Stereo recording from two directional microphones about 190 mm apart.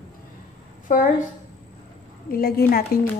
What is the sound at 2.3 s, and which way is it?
Speech, 50° left (ahead or behind).